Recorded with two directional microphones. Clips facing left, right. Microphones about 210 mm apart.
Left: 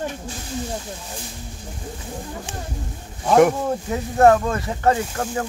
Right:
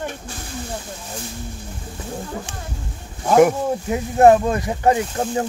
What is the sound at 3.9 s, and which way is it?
Speech, 20° right (ahead or behind).